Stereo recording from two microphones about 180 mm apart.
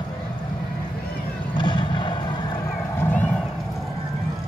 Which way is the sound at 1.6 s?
25° left (ahead or behind).